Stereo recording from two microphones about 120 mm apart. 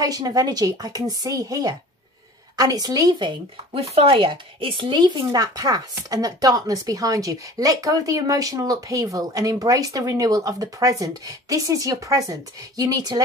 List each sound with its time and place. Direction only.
0.0 s speech: 30° right (ahead or behind)
3.7 s speech: 55° right (ahead or behind); by 13.2 s 35° right (ahead or behind)